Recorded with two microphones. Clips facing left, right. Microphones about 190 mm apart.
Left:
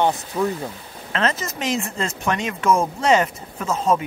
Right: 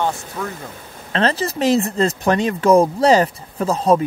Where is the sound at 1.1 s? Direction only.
35° right (ahead or behind).